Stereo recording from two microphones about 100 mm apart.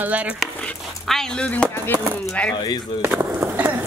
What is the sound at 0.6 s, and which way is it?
Speech, 5° left (ahead or behind).